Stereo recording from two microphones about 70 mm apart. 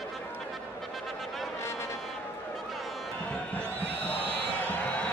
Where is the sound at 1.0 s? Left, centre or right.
Centre.